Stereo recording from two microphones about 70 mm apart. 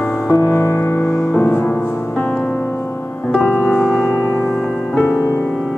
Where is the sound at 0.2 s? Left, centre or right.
Left.